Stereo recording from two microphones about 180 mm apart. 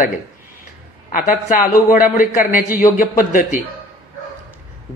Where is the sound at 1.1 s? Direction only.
50° left (ahead or behind).